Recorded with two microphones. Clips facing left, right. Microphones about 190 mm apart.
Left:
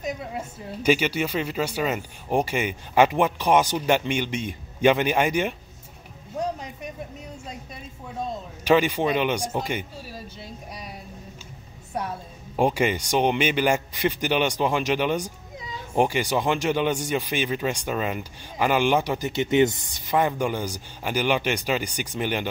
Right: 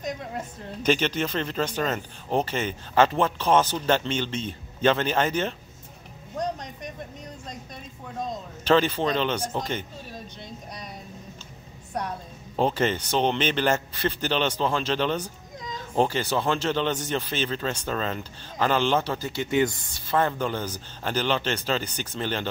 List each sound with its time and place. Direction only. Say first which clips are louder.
0.0 s a man's voice: left 1 dB; 5° left (ahead or behind)
6.3 s a sound: left 1 dB; 5° left (ahead or behind)
8.3 s a man's voice: left 1 dB; 15° left (ahead or behind)
12.5 s a man's voice: left 2 dB; 10° left (ahead or behind)